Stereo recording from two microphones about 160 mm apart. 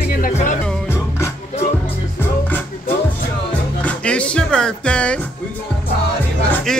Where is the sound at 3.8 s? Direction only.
5° left (ahead or behind).